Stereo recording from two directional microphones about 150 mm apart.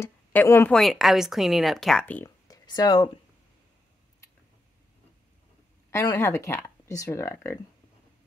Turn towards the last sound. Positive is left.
turn(degrees=15)  # may be behind; listen again after turning